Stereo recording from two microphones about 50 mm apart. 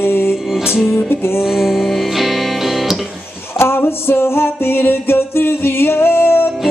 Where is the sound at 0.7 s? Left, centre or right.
Centre.